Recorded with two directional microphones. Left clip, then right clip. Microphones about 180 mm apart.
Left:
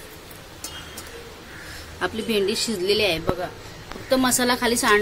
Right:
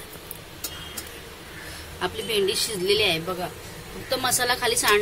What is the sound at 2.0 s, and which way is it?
A woman's voice, 45° left (ahead or behind).